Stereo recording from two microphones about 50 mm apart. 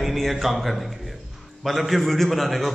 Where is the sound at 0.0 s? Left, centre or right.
Centre.